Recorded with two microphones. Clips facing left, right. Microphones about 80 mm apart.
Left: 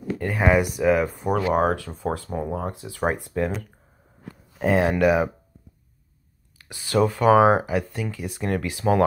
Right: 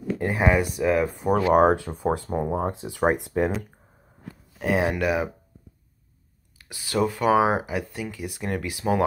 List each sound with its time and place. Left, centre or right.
0.4 s speech: centre
1.6 s speech: right
4.6 s speech: centre
6.6 s speech: centre